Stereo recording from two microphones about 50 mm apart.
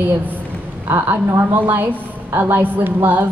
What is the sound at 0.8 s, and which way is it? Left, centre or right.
Speech, right.